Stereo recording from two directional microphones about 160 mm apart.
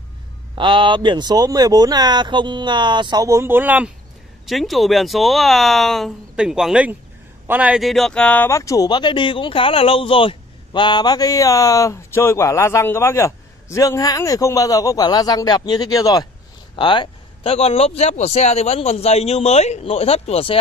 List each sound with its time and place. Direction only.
0.6 s speech: 30° right (ahead or behind); by 20.5 s 40° left (ahead or behind)